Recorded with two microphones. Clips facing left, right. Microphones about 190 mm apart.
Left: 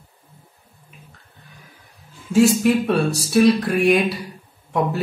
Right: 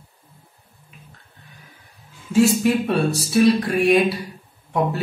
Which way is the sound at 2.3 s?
Centre (ahead or behind).